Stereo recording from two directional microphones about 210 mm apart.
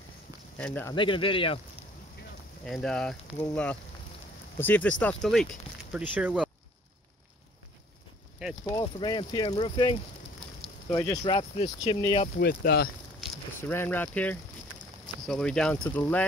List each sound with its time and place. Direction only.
0.6 s speech: 5° left (ahead or behind)
0.9 s speech: 25° left (ahead or behind)
2.6 s speech: 5° left (ahead or behind)
8.6 s speech: 20° left (ahead or behind)
11.3 s speech: 25° left (ahead or behind)
12.4 s speech: 50° left (ahead or behind)
13.6 s speech: 10° left (ahead or behind)